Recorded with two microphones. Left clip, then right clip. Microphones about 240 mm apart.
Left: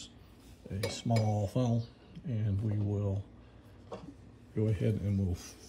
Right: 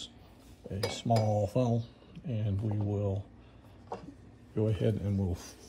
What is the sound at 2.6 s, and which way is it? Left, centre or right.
Speech, centre.